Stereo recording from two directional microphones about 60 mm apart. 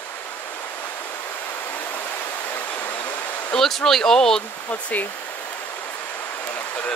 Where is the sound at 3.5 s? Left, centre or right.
Centre.